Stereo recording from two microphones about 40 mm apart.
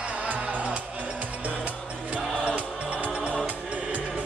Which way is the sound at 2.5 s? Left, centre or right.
Right.